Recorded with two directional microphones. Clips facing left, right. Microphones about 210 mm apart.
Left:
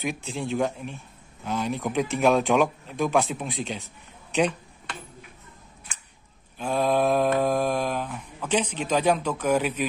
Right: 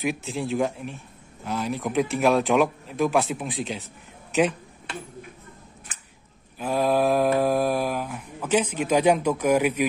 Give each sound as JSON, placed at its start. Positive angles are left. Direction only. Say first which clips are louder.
{"t": 0.0, "sound": "speech", "louder": "right 3 dB", "side_deg": 0}
{"t": 6.6, "sound": "mantra", "louder": "right 1 dB", "side_deg": -5}